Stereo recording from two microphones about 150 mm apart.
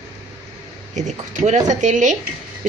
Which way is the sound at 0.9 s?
55° right (ahead or behind).